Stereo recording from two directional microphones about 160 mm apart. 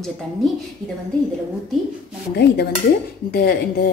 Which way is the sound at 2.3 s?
90° left.